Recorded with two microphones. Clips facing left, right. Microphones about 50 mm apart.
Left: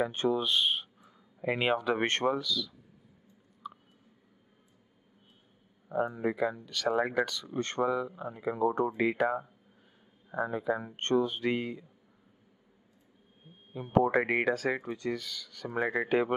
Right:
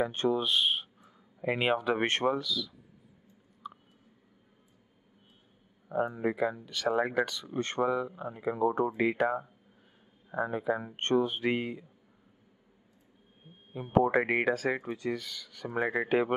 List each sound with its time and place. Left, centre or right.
0.0 s speech: centre
3.6 s a sound: centre
5.9 s speech: centre
10.3 s speech: centre
13.7 s speech: centre